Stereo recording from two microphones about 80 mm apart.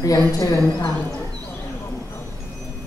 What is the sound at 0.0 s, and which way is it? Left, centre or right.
Speech, left.